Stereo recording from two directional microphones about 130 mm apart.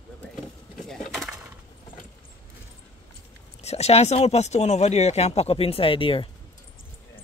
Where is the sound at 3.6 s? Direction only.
55° left (ahead or behind).